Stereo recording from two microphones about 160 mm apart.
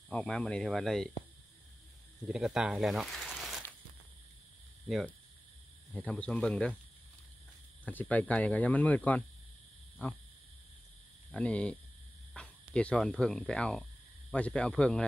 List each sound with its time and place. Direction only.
0.1 s speech: 10° left (ahead or behind)
2.2 s speech: 5° right (ahead or behind)
4.8 s speech: centre (ahead or behind)
7.8 s speech: 10° left (ahead or behind)
11.3 s speech: 10° left (ahead or behind)